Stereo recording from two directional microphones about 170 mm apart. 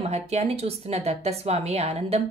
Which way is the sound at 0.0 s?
40° right (ahead or behind).